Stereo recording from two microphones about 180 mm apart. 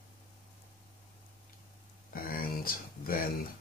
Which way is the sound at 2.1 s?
55° left (ahead or behind).